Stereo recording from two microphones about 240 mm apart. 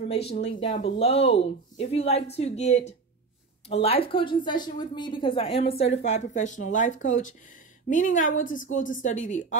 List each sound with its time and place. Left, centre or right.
0.1 s a woman's voice: left